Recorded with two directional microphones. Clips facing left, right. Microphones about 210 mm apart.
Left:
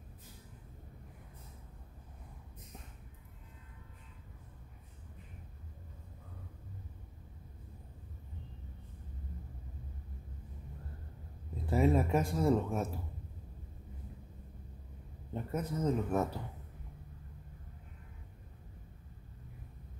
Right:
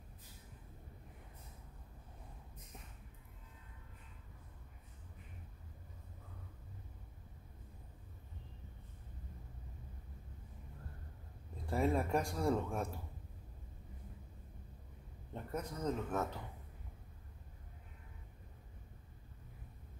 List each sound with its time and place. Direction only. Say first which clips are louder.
11.6 s speech: left 5 dB; 5° left (ahead or behind)
15.3 s speech: left 6 dB; 5° left (ahead or behind)